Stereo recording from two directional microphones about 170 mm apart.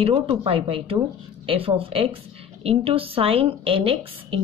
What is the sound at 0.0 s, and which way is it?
A woman's voice, 30° right (ahead or behind).